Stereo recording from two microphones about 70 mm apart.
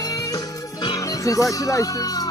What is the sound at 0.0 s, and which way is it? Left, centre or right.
Music, left.